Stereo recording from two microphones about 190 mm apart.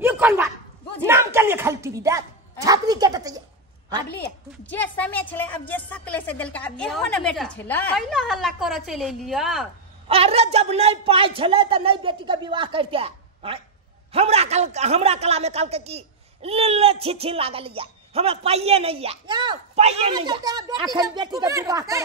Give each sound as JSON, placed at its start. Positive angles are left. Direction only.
{"t": 0.0, "sound": "a sound", "side_deg": -10}
{"t": 1.0, "sound": "a woman's voice", "side_deg": -15}
{"t": 4.6, "sound": "a woman's voice", "side_deg": 10}
{"t": 10.0, "sound": "a woman's voice", "side_deg": -30}